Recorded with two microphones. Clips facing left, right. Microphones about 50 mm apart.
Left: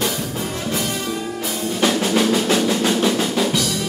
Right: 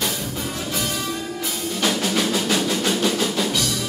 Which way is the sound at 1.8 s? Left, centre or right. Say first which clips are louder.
Left 4 dB; left.